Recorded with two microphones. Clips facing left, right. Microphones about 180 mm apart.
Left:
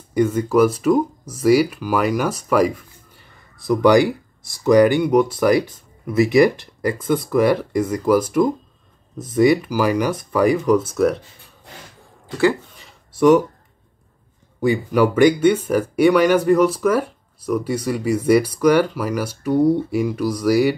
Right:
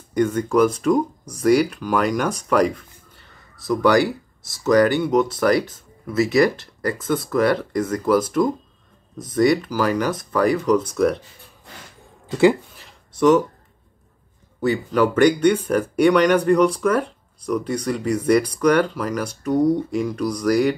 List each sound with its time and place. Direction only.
0.1 s speech: 5° left (ahead or behind)
12.7 s a sound: centre (ahead or behind)
14.6 s speech: 10° left (ahead or behind)